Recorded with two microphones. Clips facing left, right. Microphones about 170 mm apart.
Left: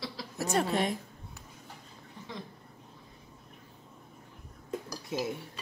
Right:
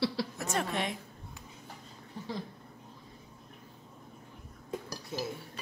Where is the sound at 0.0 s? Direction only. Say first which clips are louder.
Right 9 dB; 70° right (ahead or behind).